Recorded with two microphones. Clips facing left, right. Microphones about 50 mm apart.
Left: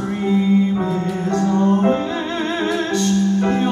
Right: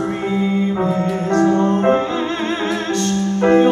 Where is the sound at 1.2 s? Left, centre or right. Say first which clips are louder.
Right 4 dB; right.